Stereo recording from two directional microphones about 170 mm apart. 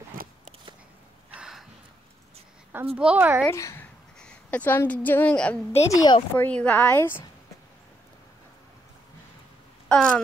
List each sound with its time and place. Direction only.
1.3 s a sound: 5° right (ahead or behind)
3.0 s speech: 10° right (ahead or behind)
3.4 s a woman's voice: 15° left (ahead or behind)
4.2 s a woman's voice: 5° left (ahead or behind)
5.9 s speech: 25° left (ahead or behind)
6.3 s a woman's voice: 10° left (ahead or behind)
9.8 s a sound: 5° left (ahead or behind)